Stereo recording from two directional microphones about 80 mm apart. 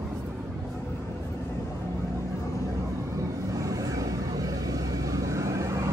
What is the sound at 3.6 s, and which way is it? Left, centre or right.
Vehicle, right.